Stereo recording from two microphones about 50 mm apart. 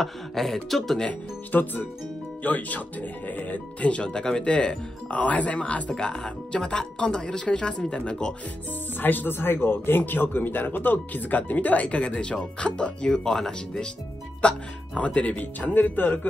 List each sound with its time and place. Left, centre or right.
0.0 s speech: centre
1.5 s speech: left
3.9 s speech: centre
8.9 s speech: left